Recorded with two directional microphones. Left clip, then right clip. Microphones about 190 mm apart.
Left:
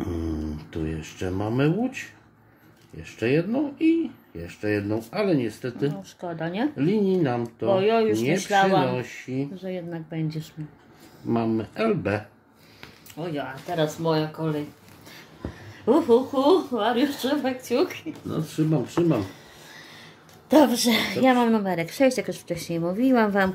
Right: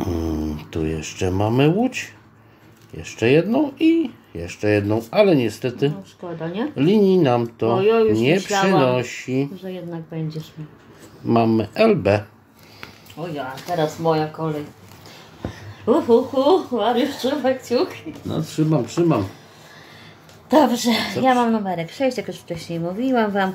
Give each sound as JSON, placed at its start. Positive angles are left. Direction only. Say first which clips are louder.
{"t": 0.1, "sound": "speech", "louder": "right 6 dB", "side_deg": -20}
{"t": 6.2, "sound": "speech", "louder": "right 1 dB", "side_deg": 35}
{"t": 6.8, "sound": "speech", "louder": "right 8 dB", "side_deg": -20}
{"t": 7.8, "sound": "speech", "louder": "right 7 dB", "side_deg": 30}
{"t": 8.8, "sound": "speech", "louder": "right 8 dB", "side_deg": -25}
{"t": 9.6, "sound": "speech", "louder": "right 1 dB", "side_deg": 30}
{"t": 11.2, "sound": "speech", "louder": "right 8 dB", "side_deg": -25}
{"t": 13.2, "sound": "speech", "louder": "right 3 dB", "side_deg": 20}
{"t": 15.8, "sound": "speech", "louder": "right 3 dB", "side_deg": 15}
{"t": 18.3, "sound": "speech", "louder": "right 5 dB", "side_deg": -25}
{"t": 20.4, "sound": "a woman's voice", "louder": "right 2 dB", "side_deg": 15}